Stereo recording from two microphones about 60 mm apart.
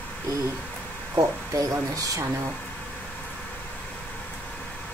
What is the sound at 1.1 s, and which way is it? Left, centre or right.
Speech, right.